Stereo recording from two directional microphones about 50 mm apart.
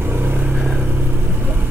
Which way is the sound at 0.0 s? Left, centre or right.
Right.